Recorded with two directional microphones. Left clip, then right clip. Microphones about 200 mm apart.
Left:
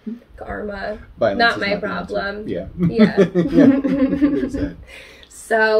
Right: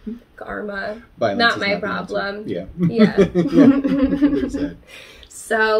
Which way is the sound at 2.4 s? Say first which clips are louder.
Left 1 dB; 5° left (ahead or behind).